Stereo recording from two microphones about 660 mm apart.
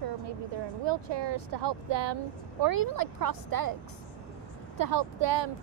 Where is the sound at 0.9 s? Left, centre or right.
Right.